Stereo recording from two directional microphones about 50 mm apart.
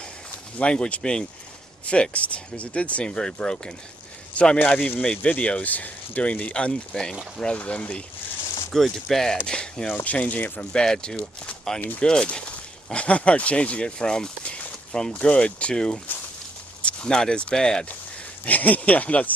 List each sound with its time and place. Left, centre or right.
0.6 s speech: left
4.6 s speech: left
6.5 s speech: centre
7.5 s speech: left
8.7 s speech: centre
10.0 s speech: left
10.6 s speech: centre
18.4 s speech: left